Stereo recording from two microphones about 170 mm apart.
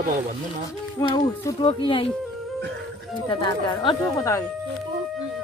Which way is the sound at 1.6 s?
35° left (ahead or behind).